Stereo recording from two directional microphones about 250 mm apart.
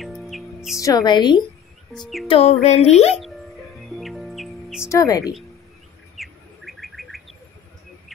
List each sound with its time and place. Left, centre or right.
0.0 s music: centre
0.7 s a woman's voice: centre
2.0 s speech: centre
2.2 s a sound: left
3.2 s music: centre
4.8 s a woman's voice: centre
6.1 s bird: centre